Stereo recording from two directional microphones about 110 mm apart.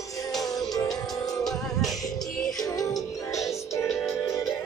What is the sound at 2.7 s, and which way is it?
Music, 30° left (ahead or behind).